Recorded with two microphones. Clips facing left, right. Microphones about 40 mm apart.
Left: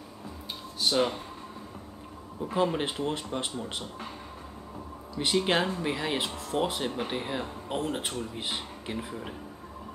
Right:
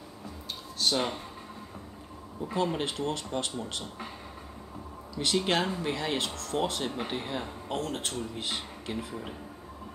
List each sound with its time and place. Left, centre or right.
0.7 s speech: centre
2.5 s speech: centre
5.1 s speech: centre
7.8 s speech: centre